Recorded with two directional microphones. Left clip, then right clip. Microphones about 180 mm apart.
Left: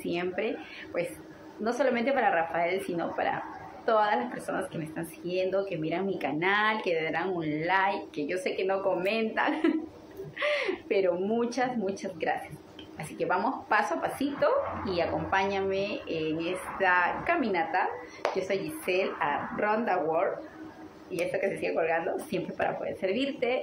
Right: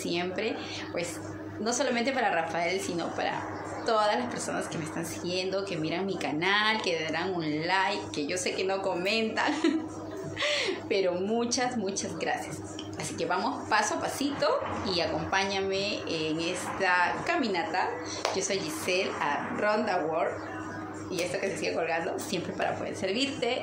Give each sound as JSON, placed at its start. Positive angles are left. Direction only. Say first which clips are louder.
{"t": 0.0, "sound": "speech", "louder": "even", "side_deg": -10}
{"t": 1.6, "sound": "a woman's voice", "louder": "left 1 dB", "side_deg": -10}
{"t": 5.5, "sound": "speech", "louder": "left 1 dB", "side_deg": -10}
{"t": 13.7, "sound": "speech", "louder": "even", "side_deg": -10}
{"t": 16.2, "sound": "speech", "louder": "left 2 dB", "side_deg": 20}
{"t": 16.8, "sound": "speech", "louder": "left 1 dB", "side_deg": -10}
{"t": 21.4, "sound": "speech", "louder": "left 4 dB", "side_deg": -15}